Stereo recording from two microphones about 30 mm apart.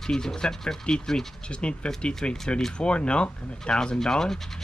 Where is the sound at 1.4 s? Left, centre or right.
Left.